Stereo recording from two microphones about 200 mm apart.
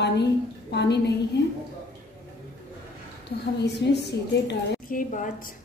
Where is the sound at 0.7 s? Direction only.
55° left (ahead or behind).